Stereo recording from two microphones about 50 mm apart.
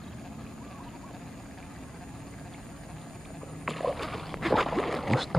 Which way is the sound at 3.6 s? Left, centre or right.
Centre.